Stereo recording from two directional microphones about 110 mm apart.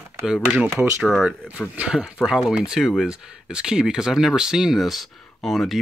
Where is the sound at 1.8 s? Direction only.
5° right (ahead or behind).